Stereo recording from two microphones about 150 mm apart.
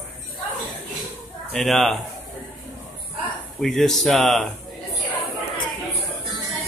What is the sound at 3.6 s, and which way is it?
Speech, centre (ahead or behind).